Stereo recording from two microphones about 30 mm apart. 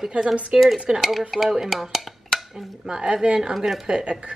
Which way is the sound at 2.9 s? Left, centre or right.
Right.